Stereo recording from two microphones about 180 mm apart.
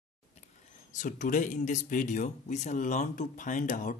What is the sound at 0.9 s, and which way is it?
Speech, 45° left (ahead or behind).